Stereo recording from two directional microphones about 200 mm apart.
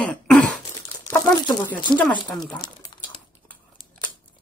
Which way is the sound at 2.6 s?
25° left (ahead or behind).